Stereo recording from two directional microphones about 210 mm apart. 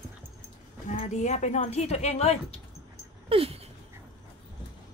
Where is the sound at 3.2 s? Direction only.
30° right (ahead or behind).